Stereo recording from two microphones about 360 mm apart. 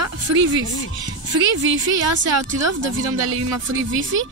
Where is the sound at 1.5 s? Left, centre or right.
Right.